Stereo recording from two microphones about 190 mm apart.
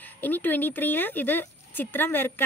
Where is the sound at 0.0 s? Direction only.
10° left (ahead or behind).